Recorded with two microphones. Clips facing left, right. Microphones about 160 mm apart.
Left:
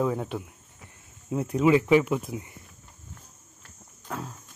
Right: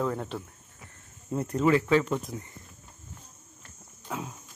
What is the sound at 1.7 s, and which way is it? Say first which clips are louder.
Speech: left 3 dB; 15° left (ahead or behind).